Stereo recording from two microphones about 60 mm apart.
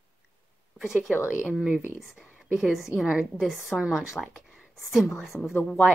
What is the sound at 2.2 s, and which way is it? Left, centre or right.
A woman's voice, centre.